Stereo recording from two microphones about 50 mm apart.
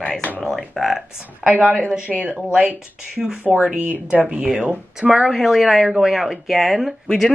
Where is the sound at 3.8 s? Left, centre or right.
Right.